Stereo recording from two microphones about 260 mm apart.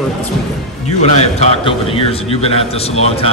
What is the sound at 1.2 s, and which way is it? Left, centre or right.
A man's voice, left.